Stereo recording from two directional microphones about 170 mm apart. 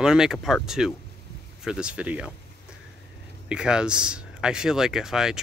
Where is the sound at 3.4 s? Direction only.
5° right (ahead or behind).